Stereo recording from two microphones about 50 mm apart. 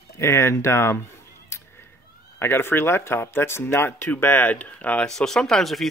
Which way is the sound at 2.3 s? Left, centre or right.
Left.